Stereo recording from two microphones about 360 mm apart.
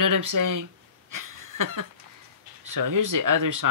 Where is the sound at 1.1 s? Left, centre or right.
Right.